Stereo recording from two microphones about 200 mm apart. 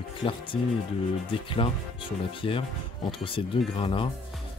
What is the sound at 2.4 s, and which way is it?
Speech, 25° left (ahead or behind).